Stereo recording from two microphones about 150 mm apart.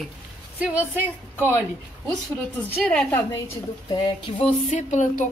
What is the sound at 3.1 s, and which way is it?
Speech, 15° left (ahead or behind).